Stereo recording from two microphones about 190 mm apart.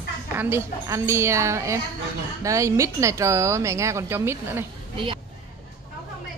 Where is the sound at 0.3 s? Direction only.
10° right (ahead or behind).